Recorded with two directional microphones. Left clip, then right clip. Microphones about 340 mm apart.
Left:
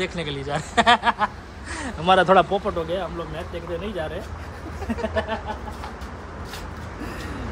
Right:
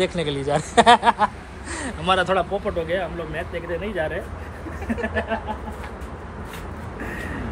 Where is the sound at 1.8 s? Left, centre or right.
Centre.